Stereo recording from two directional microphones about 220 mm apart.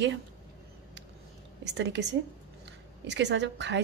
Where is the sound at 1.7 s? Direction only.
50° right (ahead or behind).